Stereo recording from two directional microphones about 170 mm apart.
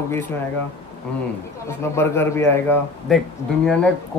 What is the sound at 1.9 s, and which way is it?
Speech, 15° left (ahead or behind).